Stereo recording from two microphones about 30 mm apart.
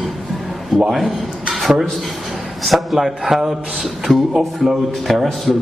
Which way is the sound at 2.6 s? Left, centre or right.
Centre.